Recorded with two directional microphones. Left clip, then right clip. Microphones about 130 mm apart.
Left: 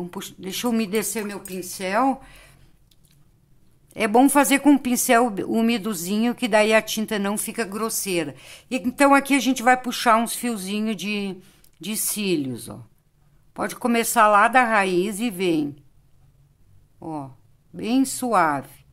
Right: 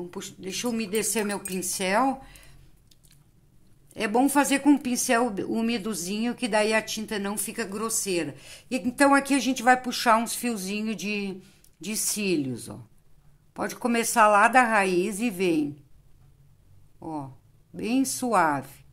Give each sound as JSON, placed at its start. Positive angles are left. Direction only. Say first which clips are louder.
{"t": 0.0, "sound": "speech", "louder": "left 3 dB", "side_deg": 40}
{"t": 1.1, "sound": "a woman's voice", "louder": "right 1 dB", "side_deg": 0}
{"t": 2.0, "sound": "speech", "louder": "left 4 dB", "side_deg": 35}
{"t": 3.9, "sound": "a woman's voice", "louder": "left 6 dB", "side_deg": 35}
{"t": 17.0, "sound": "a woman's voice", "louder": "left 3 dB", "side_deg": 15}